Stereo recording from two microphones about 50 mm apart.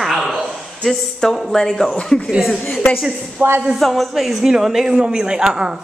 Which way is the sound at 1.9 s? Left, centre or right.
Centre.